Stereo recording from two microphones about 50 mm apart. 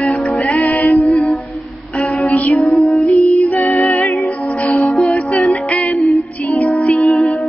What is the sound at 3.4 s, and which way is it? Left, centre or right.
Music, left.